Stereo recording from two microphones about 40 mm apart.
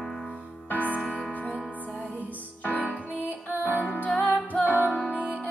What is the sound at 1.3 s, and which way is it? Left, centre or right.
Music, left.